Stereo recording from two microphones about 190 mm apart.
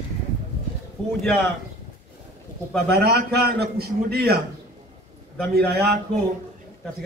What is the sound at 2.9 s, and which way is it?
A man's voice, 60° right (ahead or behind).